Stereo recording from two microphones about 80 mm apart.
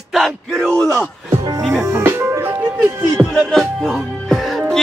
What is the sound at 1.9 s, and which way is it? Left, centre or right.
Music, right.